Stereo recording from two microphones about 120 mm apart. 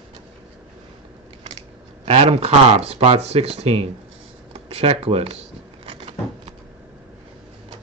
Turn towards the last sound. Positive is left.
turn(degrees=-55)  # may be behind; listen again after turning